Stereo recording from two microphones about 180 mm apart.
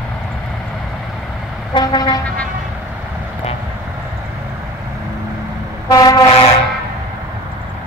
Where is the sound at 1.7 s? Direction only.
20° left (ahead or behind).